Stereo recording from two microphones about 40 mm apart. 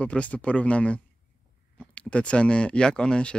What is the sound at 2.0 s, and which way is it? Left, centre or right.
Speech, left.